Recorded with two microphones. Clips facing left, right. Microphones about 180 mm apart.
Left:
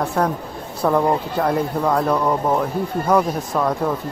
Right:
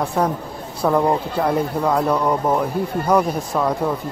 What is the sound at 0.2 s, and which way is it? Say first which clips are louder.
Speech: even; centre (ahead or behind).